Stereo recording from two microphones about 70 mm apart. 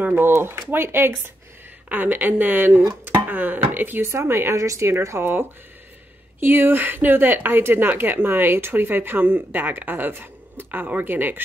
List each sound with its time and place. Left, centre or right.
0.0 s speech: right
6.4 s speech: right